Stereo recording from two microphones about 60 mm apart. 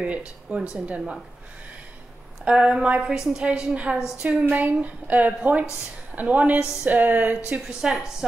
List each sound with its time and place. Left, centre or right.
0.0 s a woman's voice: right
2.4 s a woman's voice: centre
7.8 s a woman's voice: centre